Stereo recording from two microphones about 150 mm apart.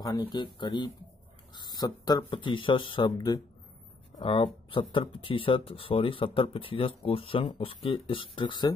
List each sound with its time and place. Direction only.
0.0 s speech: 30° left (ahead or behind)
4.2 s speech: 35° left (ahead or behind)